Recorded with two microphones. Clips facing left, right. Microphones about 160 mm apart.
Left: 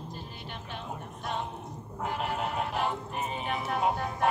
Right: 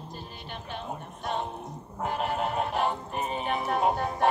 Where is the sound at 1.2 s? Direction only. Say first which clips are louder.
Right 3 dB; 40° right (ahead or behind).